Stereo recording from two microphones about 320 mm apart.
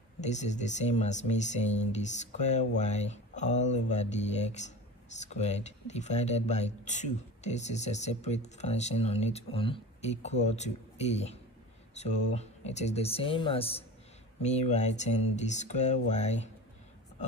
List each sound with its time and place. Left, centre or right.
0.2 s speech: left